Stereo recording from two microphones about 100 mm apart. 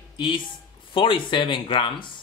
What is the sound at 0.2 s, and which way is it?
Speech, 55° left (ahead or behind).